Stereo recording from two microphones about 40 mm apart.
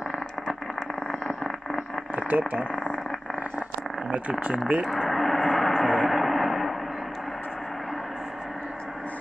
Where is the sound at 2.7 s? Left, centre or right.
Centre.